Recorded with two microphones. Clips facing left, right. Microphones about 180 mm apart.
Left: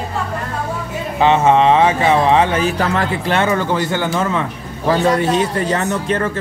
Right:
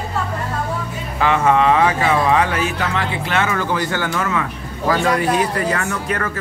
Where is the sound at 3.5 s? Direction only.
20° left (ahead or behind).